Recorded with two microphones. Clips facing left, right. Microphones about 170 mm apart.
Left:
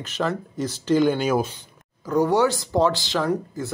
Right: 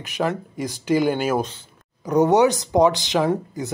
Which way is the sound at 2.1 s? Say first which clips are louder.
Right 3 dB; 20° right (ahead or behind).